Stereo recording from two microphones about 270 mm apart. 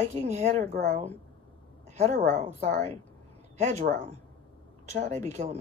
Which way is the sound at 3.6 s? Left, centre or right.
Right.